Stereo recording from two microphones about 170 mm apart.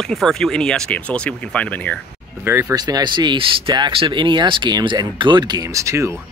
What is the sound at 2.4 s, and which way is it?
Speech, 20° right (ahead or behind).